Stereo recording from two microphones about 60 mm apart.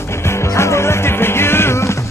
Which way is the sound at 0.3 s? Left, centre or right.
Left.